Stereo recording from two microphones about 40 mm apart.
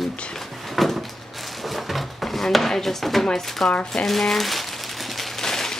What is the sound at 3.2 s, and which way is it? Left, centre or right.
Speech, centre.